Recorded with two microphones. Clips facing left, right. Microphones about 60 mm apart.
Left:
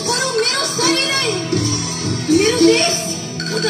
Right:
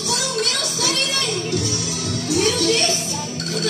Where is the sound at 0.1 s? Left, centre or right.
Left.